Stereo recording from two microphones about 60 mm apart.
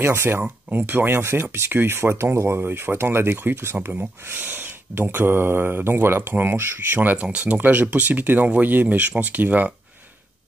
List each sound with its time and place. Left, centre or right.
0.0 s speech: right
7.2 s speech: centre